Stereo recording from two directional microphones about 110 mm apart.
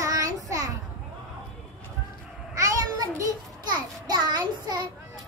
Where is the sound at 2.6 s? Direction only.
30° right (ahead or behind).